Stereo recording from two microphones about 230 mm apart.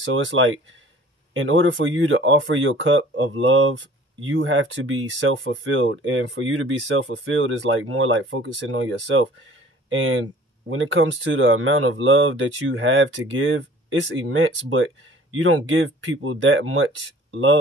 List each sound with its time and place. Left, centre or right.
0.0 s speech: right